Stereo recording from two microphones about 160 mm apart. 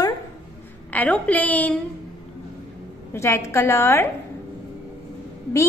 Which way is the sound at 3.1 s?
20° left (ahead or behind).